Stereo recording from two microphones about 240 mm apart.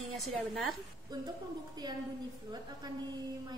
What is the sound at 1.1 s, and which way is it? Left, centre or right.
A woman's voice, centre.